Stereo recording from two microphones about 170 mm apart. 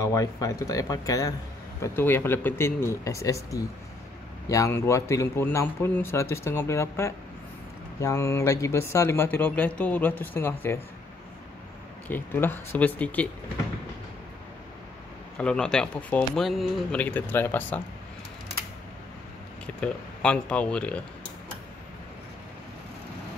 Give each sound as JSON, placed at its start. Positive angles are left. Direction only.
{"t": 0.0, "sound": "speech", "side_deg": 20}
{"t": 12.1, "sound": "speech", "side_deg": 10}
{"t": 15.3, "sound": "speech", "side_deg": 5}
{"t": 19.6, "sound": "speech", "side_deg": 5}